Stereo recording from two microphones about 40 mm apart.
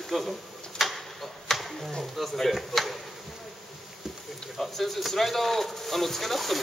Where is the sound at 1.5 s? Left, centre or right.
Centre.